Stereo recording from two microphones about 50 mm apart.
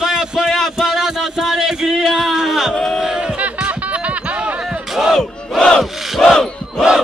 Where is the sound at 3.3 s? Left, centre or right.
Right.